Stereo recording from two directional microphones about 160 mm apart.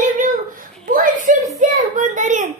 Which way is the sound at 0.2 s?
55° right (ahead or behind).